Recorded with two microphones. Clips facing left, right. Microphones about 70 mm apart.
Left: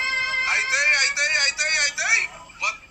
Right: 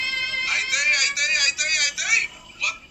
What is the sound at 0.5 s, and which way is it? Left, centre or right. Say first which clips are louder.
Speech: left 2 dB; left.